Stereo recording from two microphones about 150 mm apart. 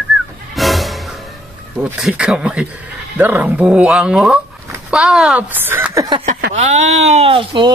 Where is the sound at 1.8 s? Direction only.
10° right (ahead or behind).